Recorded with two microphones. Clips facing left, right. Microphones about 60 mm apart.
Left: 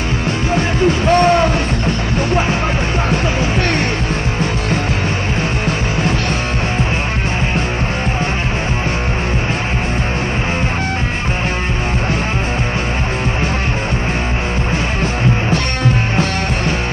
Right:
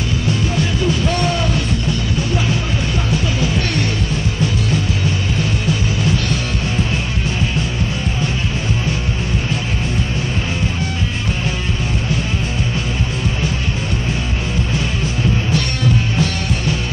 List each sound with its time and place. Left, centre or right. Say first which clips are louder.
0.6 s a sound: left 3 dB; left
2.1 s music: left 4 dB; left
5.4 s music: left 1 dB; left